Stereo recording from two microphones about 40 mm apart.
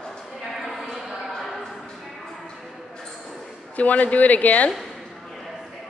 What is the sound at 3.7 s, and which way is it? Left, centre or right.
Speech, left.